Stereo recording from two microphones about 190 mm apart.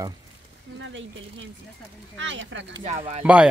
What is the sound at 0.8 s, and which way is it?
Speech, 90° right.